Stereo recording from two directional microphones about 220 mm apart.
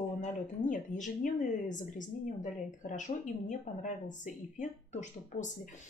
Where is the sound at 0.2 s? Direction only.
35° left (ahead or behind).